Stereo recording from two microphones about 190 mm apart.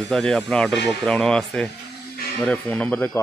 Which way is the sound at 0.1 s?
5° left (ahead or behind).